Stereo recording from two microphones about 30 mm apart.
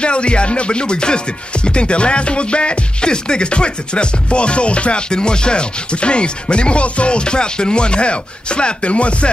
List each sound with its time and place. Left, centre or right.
0.0 s music: left
5.1 s music: left